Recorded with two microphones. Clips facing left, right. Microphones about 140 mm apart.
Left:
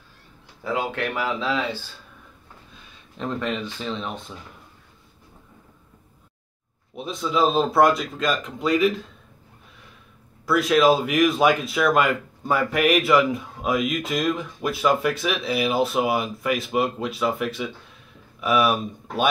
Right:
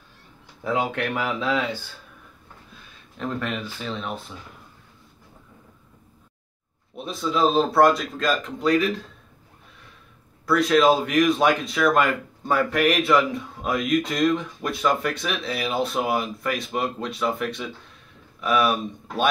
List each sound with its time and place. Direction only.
0.7 s speech: 15° right (ahead or behind)
3.5 s speech: 5° right (ahead or behind)
7.0 s speech: centre (ahead or behind)
10.4 s speech: 5° left (ahead or behind)